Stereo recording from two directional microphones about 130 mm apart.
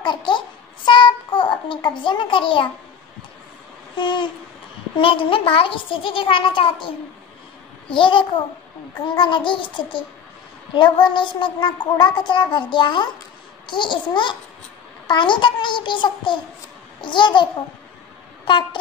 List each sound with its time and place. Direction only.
0.0 s babbling: 40° left (ahead or behind)
0.8 s a sound: 35° left (ahead or behind)
3.9 s babbling: 35° left (ahead or behind)
5.0 s a child's voice: 40° left (ahead or behind)
7.9 s child singing: 40° left (ahead or behind)
18.4 s speech: 40° left (ahead or behind)